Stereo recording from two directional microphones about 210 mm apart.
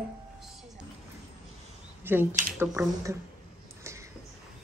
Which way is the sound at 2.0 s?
10° right (ahead or behind).